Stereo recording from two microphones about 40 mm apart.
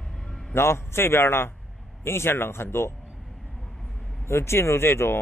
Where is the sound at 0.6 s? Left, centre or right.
Left.